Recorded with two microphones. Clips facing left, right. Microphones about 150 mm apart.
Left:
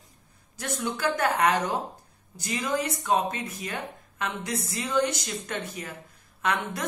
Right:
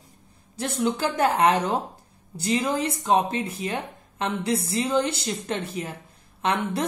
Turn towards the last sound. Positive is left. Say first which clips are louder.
# right 4 dB
turn(degrees=-30)  # may be behind; listen again after turning